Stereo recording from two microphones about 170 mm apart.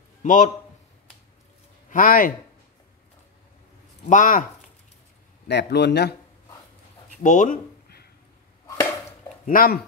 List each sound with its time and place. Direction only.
0.2 s a man's voice: 45° left (ahead or behind)
1.9 s speech: 55° left (ahead or behind)
4.1 s speech: 50° left (ahead or behind)
5.5 s speech: 85° left
7.2 s speech: 45° left (ahead or behind)
9.5 s speech: 60° left (ahead or behind)